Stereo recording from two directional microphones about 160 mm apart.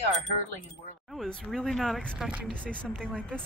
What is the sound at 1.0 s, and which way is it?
Speech, centre (ahead or behind).